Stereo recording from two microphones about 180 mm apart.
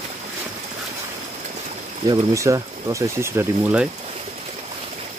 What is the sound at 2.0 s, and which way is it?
Speech, 20° right (ahead or behind).